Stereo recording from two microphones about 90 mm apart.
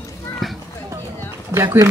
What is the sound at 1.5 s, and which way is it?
Speech, 30° right (ahead or behind).